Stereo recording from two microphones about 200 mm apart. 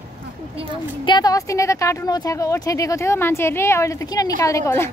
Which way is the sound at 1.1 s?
20° left (ahead or behind).